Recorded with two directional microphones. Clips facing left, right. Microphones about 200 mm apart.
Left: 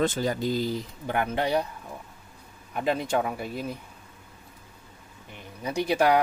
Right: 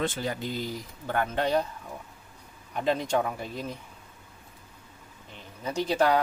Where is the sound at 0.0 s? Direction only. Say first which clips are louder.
Left 5 dB; 40° left (ahead or behind).